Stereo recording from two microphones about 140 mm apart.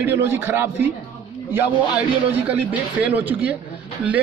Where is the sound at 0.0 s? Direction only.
15° right (ahead or behind).